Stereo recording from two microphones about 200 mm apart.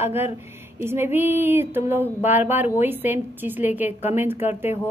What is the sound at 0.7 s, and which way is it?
A woman's voice, 10° right (ahead or behind).